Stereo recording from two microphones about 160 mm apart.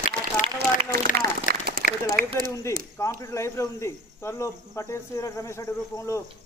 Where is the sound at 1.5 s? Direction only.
75° right (ahead or behind).